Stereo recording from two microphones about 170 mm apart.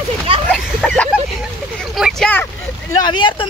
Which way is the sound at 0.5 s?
5° left (ahead or behind).